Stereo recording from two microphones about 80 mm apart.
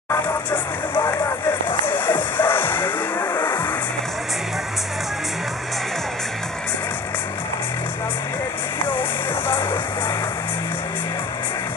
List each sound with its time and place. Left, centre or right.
0.9 s vehicle: left
2.0 s music: left
9.6 s music: left